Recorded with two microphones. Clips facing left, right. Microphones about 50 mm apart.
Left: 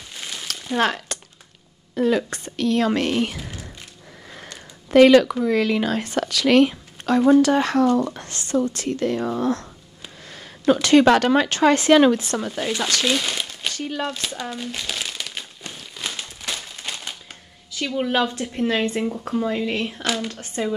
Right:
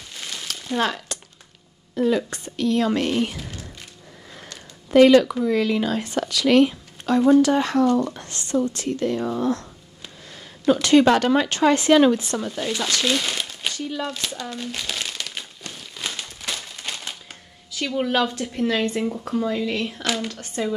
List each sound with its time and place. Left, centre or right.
0.1 s a sound: centre
0.7 s speech: left
3.1 s speech: left
4.9 s speech: left
10.7 s speech: left
12.4 s speech: left
13.0 s crumpling: centre
13.7 s speech: left
14.5 s crumpling: centre
15.6 s a sound: centre
16.0 s crumpling: centre
17.6 s a woman's voice: centre
18.9 s speech: centre
19.3 s a woman's voice: left